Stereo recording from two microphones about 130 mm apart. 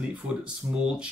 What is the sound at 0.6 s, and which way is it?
Speech, 20° right (ahead or behind).